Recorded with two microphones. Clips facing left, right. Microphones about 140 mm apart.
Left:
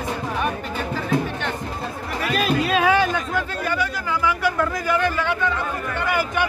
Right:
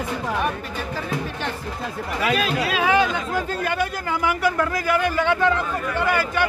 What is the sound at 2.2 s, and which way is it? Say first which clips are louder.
Music: left 1 dB; 90° right.